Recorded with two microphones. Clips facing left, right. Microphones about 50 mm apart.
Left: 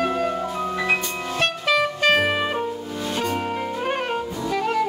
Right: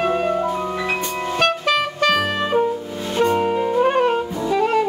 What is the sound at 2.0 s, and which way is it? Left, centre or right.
Music, left.